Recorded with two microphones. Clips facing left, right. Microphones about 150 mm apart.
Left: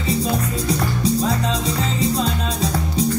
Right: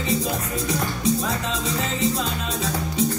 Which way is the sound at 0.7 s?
35° left (ahead or behind).